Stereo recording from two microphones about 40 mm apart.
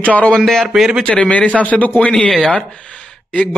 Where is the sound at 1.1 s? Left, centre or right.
Left.